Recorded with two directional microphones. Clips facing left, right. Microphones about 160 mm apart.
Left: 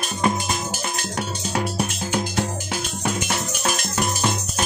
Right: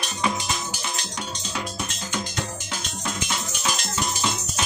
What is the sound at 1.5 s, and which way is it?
Music, 60° left (ahead or behind).